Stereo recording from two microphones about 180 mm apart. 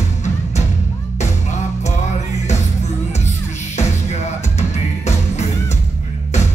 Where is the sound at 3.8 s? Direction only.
40° left (ahead or behind).